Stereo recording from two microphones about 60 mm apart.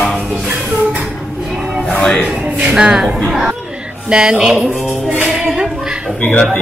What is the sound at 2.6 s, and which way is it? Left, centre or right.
Speech, centre.